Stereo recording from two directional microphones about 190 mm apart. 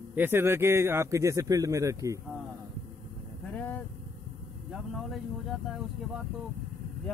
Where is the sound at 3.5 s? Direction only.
10° left (ahead or behind).